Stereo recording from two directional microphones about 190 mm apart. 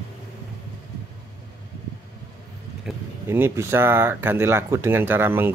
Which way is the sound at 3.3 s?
15° right (ahead or behind).